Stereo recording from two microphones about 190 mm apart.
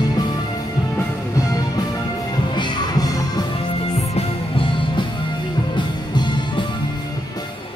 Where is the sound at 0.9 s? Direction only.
15° left (ahead or behind).